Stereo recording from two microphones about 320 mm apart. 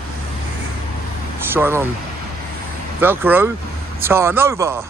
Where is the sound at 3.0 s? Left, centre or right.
Centre.